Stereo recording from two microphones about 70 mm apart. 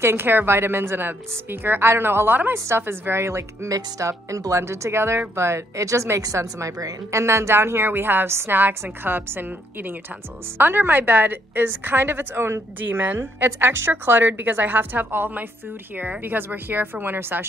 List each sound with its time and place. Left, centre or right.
0.0 s speech: right
2.5 s a woman's voice: right